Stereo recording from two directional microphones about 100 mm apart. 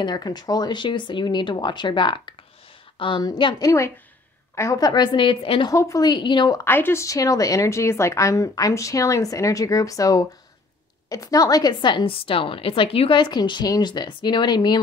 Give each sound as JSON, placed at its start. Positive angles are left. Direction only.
{"t": 0.0, "sound": "a woman's voice", "side_deg": 45}
{"t": 4.6, "sound": "a woman's voice", "side_deg": 35}
{"t": 5.7, "sound": "a woman's voice", "side_deg": 35}
{"t": 6.0, "sound": "a woman's voice", "side_deg": 50}
{"t": 6.6, "sound": "a woman's voice", "side_deg": 25}